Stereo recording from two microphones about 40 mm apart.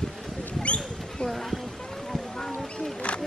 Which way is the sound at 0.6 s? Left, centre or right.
Left.